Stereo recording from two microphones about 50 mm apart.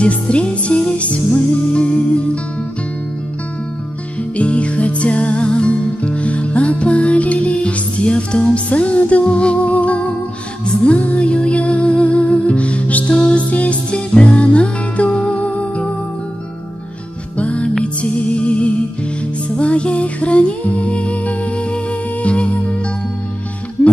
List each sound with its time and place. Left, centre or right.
0.0 s music: left
4.4 s music: left
17.4 s music: left